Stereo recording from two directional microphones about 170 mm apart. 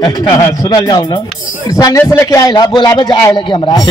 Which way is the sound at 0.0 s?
20° left (ahead or behind).